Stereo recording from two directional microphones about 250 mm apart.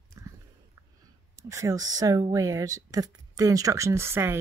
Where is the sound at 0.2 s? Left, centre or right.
Centre.